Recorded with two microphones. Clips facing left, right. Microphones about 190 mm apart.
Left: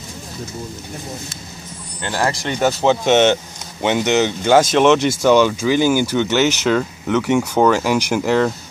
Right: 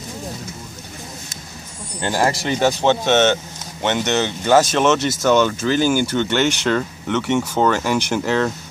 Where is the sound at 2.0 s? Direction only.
20° right (ahead or behind).